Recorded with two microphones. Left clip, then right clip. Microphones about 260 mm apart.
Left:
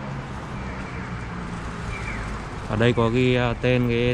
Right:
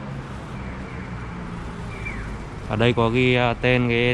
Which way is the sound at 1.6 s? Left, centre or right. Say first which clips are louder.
Left 1 dB; centre.